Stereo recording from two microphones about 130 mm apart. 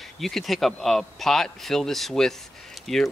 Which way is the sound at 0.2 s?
Centre (ahead or behind).